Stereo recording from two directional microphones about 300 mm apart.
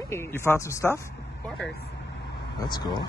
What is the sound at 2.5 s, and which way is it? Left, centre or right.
Speech, centre.